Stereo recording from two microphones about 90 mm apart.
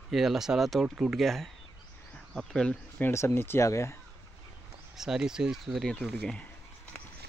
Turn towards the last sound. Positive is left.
turn(degrees=15)  # may be behind; listen again after turning